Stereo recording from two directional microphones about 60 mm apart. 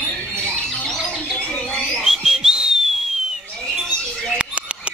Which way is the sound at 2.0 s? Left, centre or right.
Centre.